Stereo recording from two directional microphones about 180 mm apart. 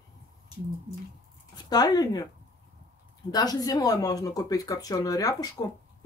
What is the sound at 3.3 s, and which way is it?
Speech, 20° left (ahead or behind).